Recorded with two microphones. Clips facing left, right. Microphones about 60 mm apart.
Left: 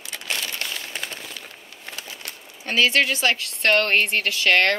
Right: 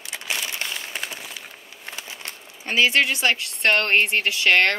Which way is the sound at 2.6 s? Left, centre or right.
Centre.